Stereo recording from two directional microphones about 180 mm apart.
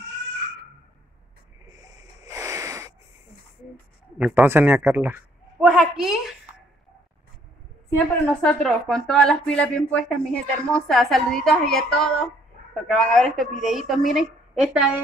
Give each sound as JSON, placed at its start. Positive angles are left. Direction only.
{"t": 1.7, "sound": "wheeze", "side_deg": -20}
{"t": 4.2, "sound": "a man's voice", "side_deg": -10}
{"t": 8.4, "sound": "speech", "side_deg": 5}